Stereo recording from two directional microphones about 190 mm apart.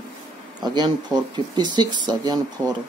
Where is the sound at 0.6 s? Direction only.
20° right (ahead or behind).